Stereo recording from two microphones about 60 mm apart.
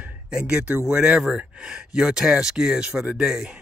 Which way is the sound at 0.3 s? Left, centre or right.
Centre.